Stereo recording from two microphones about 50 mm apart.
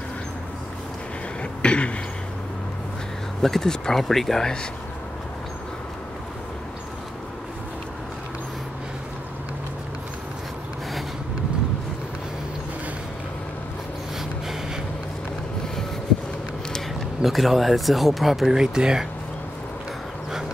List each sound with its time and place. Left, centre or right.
1.4 s cough: left
3.4 s speech: centre
17.2 s speech: centre
18.6 s speech: centre